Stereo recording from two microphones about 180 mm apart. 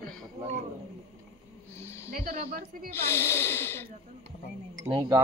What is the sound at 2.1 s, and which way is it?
Speech, 50° right (ahead or behind).